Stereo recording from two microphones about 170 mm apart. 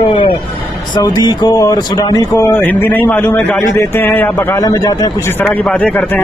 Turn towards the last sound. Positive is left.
turn(degrees=10)  # may be behind; listen again after turning